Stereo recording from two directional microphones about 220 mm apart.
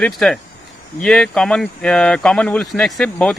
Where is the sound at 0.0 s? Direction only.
Centre (ahead or behind).